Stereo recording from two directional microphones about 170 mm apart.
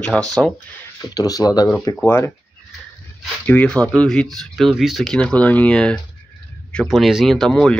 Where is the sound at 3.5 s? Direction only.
10° left (ahead or behind).